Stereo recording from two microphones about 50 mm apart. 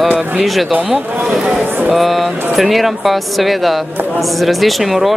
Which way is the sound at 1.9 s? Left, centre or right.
Centre.